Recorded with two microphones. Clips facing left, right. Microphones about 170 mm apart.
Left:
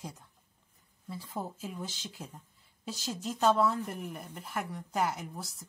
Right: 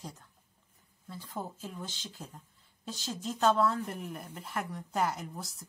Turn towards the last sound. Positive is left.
turn(degrees=0)  # may be behind; listen again after turning